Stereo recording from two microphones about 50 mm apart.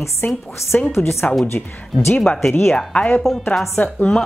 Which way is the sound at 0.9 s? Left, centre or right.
Left.